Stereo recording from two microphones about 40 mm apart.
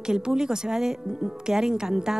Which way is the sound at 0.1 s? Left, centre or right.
Centre.